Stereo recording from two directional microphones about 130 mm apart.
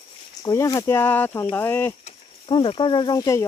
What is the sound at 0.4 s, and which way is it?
Speech, 25° left (ahead or behind).